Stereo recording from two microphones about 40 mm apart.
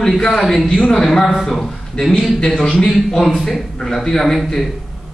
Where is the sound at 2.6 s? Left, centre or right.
Left.